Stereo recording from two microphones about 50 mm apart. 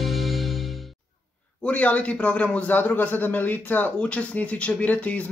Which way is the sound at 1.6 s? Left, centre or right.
Left.